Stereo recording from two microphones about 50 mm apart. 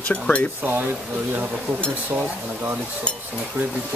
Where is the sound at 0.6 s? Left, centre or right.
Right.